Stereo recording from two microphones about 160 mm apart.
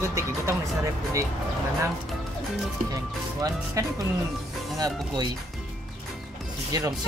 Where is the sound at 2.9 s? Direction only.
20° right (ahead or behind).